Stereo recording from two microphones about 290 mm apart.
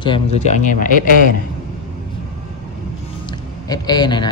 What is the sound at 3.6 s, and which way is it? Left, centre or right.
Speech, centre.